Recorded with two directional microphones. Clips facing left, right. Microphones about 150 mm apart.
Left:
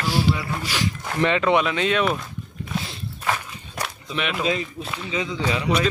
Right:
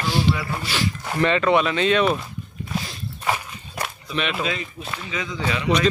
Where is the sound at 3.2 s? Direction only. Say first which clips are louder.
Right 1 dB; 10° right (ahead or behind).